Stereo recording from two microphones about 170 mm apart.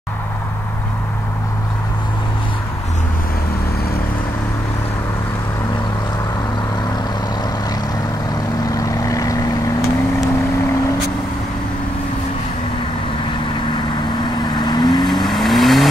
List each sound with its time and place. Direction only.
8.6 s vehicle: 20° left (ahead or behind)
14.6 s vehicle: 25° left (ahead or behind)
15.2 s vehicle: centre (ahead or behind)